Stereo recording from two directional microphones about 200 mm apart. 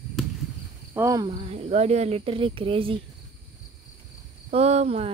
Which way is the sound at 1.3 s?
30° right (ahead or behind).